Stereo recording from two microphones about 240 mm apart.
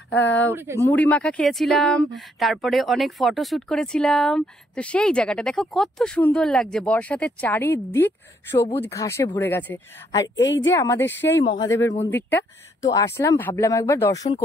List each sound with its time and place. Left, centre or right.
0.3 s speech: centre
0.6 s speech: centre
0.8 s speech: centre
10.4 s a woman's voice: left
10.7 s speech: centre